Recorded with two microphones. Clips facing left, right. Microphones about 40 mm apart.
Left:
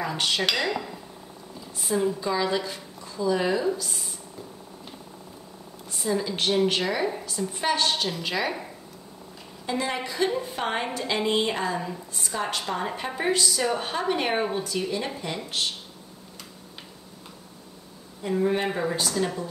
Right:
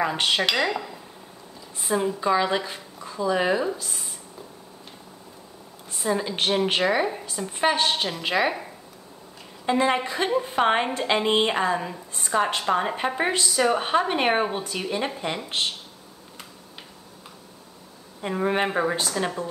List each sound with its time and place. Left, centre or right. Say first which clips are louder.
0.0 s a woman's voice: right 3 dB; right
0.5 s dishes: right 2 dB; centre
1.8 s a woman's voice: right 1 dB; centre
6.0 s a woman's voice: right 1 dB; right
9.7 s a woman's voice: right 6 dB; right
18.2 s a woman's voice: right 1 dB; right